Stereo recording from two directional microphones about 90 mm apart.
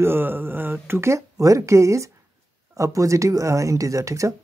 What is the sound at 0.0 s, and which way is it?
Speech, 25° right (ahead or behind).